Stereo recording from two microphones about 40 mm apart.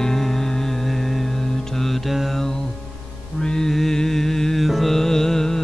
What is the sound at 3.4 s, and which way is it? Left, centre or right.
Music, centre.